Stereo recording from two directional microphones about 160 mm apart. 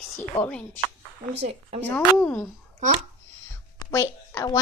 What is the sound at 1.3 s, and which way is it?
Speech, 40° right (ahead or behind).